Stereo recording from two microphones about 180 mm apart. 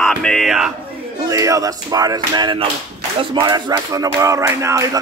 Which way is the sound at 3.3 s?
25° right (ahead or behind).